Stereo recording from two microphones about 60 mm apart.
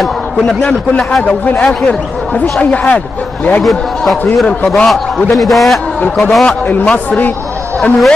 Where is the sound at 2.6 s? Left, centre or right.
Left.